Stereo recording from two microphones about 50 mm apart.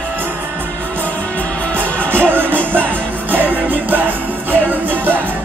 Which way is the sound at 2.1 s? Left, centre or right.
Right.